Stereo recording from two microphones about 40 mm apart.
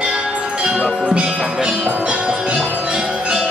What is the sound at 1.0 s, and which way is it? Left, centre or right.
Music, right.